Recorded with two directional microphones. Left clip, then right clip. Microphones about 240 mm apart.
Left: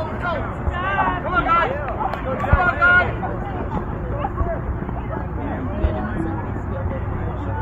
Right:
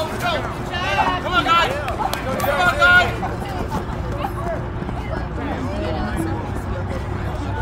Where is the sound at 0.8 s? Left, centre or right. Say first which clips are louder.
Right 1 dB; right.